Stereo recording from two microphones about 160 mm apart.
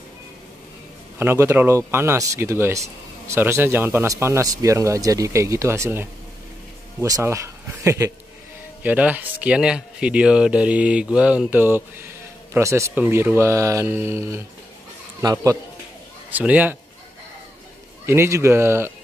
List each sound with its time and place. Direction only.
1.1 s a man's voice: 15° right (ahead or behind)
16.3 s speech: 10° right (ahead or behind)
18.0 s speech: 15° right (ahead or behind)